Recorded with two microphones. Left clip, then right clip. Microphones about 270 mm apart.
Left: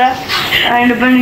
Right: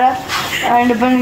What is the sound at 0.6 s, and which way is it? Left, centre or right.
Speech, right.